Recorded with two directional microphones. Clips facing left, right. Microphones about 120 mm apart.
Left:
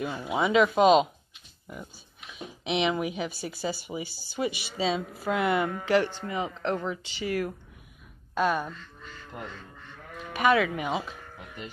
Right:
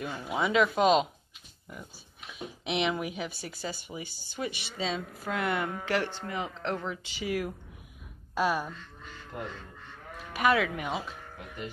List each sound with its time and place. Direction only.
0.0 s speech: 5° left (ahead or behind)
2.3 s speech: centre (ahead or behind)
10.3 s speech: centre (ahead or behind)
11.3 s speech: 15° left (ahead or behind)